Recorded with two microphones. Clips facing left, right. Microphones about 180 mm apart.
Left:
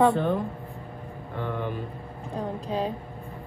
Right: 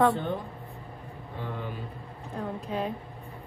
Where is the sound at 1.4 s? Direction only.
60° left (ahead or behind).